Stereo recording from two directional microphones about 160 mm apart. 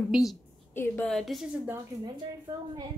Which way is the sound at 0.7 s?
15° left (ahead or behind).